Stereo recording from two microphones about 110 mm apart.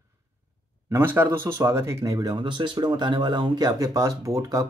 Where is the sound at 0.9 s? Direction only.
20° right (ahead or behind).